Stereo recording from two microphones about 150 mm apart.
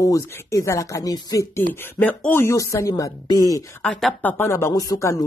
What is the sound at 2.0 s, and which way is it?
Speech, 10° left (ahead or behind).